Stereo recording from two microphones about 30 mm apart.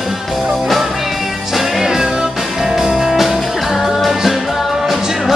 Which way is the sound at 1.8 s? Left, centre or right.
Centre.